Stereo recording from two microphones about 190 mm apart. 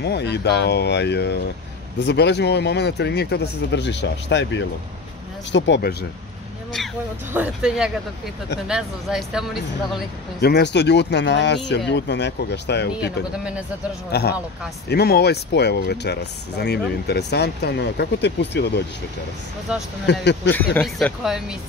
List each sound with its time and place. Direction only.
0.0 s speech: 60° left (ahead or behind)
7.3 s a woman's voice: 5° right (ahead or behind)
10.4 s speech: 60° left (ahead or behind)
13.4 s a woman's voice: 5° right (ahead or behind)
14.1 s speech: 60° left (ahead or behind)
19.7 s a woman's voice: 5° right (ahead or behind)
20.1 s speech: 65° left (ahead or behind)
20.8 s a woman's voice: centre (ahead or behind)